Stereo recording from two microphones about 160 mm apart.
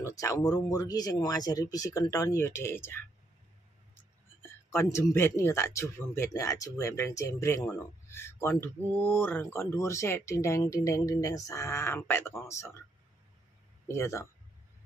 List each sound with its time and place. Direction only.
0.0 s speech: 20° left (ahead or behind)
13.8 s speech: 15° left (ahead or behind)